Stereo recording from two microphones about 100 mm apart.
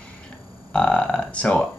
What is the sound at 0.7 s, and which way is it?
Speech, 10° left (ahead or behind).